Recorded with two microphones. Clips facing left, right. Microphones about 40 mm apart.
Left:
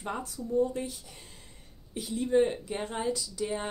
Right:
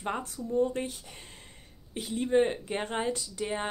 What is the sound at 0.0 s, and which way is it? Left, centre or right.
Speech, right.